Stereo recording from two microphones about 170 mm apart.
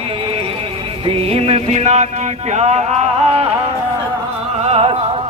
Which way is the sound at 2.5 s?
40° right (ahead or behind).